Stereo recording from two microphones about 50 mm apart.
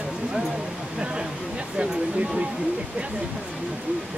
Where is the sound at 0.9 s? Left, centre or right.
Centre.